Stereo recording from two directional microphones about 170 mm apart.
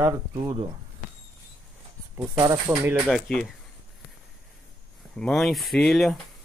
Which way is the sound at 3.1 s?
5° left (ahead or behind).